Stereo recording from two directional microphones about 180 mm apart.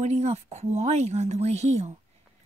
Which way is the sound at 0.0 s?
40° right (ahead or behind).